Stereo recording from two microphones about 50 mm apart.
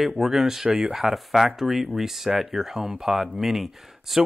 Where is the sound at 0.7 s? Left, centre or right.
Right.